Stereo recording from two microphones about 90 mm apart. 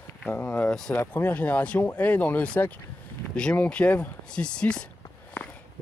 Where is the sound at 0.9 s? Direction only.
20° left (ahead or behind).